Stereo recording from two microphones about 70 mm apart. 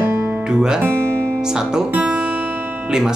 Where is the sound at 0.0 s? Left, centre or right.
Right.